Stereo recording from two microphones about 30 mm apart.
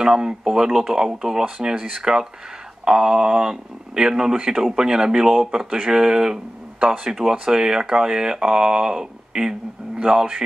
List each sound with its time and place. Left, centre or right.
0.0 s speech: right
5.3 s speech: centre
5.6 s speech: right